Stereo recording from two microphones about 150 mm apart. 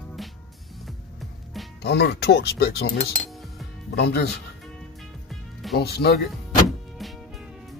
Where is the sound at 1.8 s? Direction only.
90° left.